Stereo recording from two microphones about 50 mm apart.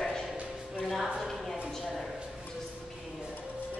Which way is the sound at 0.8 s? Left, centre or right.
Centre.